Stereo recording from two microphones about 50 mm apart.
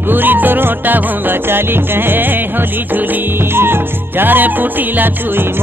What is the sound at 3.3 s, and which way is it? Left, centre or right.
Music, right.